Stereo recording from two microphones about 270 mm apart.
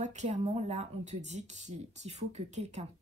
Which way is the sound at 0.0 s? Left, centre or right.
Right.